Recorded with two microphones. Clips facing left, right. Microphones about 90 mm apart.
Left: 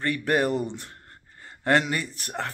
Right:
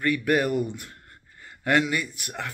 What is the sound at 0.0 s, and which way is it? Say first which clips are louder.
Speech: right 1 dB; 35° left (ahead or behind).